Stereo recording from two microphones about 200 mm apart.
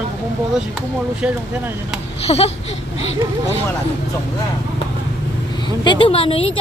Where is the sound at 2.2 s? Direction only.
30° left (ahead or behind).